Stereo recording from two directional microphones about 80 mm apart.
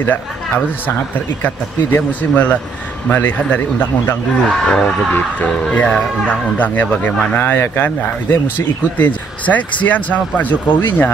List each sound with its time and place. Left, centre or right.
0.8 s speech: left
4.4 s speech: centre
5.1 s speech: centre